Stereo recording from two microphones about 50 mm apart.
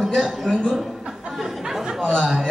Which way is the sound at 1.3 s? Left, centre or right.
Centre.